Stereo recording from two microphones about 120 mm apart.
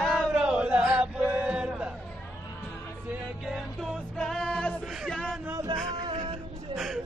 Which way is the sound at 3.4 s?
5° right (ahead or behind).